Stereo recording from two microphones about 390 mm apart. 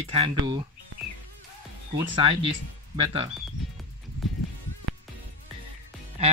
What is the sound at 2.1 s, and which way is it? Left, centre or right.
Speech, centre.